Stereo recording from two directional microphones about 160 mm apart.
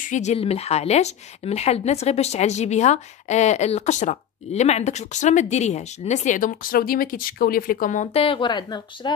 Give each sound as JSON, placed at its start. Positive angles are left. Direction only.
{"t": 0.0, "sound": "speech", "side_deg": 50}